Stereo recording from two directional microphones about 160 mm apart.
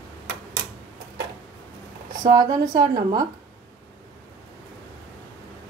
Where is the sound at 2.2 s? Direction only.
25° right (ahead or behind).